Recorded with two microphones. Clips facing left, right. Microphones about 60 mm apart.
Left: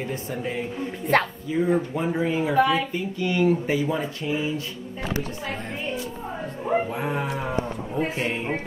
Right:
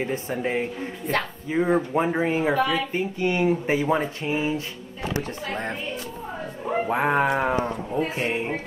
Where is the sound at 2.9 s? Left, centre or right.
Right.